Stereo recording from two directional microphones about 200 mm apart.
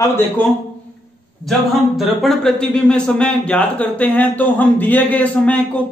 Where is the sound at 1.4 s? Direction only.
Centre (ahead or behind).